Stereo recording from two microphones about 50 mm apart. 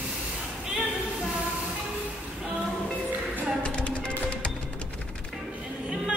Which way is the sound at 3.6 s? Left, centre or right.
Left.